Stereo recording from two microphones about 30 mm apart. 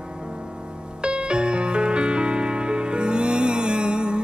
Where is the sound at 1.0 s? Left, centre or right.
Right.